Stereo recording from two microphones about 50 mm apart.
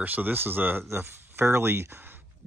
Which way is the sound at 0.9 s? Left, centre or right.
Right.